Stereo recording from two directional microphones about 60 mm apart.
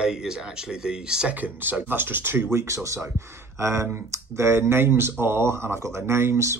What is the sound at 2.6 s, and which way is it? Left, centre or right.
Speech, right.